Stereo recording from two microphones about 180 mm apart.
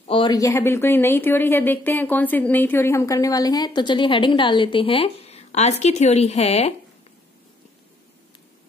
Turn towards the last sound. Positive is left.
turn(degrees=35)  # may be behind; listen again after turning